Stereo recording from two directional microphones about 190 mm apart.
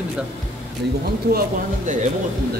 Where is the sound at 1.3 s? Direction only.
60° right (ahead or behind).